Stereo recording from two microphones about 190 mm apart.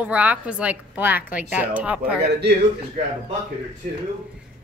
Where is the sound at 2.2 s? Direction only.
60° right (ahead or behind).